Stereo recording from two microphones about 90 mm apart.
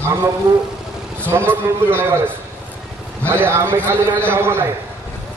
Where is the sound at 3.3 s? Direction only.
25° right (ahead or behind).